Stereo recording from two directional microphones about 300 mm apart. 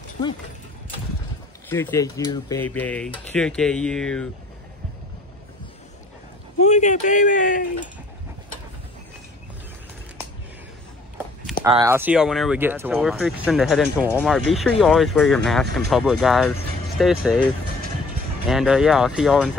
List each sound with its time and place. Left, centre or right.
1.7 s speech: centre
6.6 s speech: left
11.6 s speech: centre
18.5 s speech: centre